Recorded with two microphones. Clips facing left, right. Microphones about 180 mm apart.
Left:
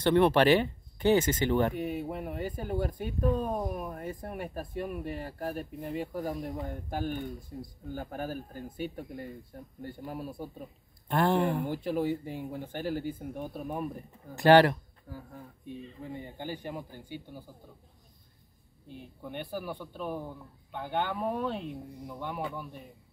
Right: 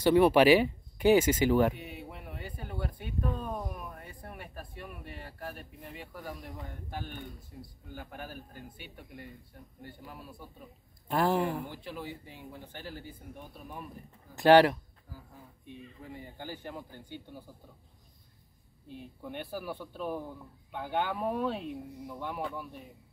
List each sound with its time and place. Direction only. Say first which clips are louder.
0.0 s speech: right 1 dB; 10° right (ahead or behind)
1.8 s speech: left 11 dB; 45° left (ahead or behind)
11.1 s speech: left 2 dB; centre (ahead or behind)
11.6 s speech: left 11 dB; 45° left (ahead or behind)
14.3 s speech: even; centre (ahead or behind)
15.8 s a man's voice: left 4 dB; 25° left (ahead or behind); by 17.5 s 5° left (ahead or behind)
18.9 s speech: even; centre (ahead or behind)